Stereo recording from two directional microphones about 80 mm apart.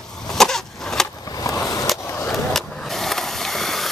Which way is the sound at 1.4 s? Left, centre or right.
Left.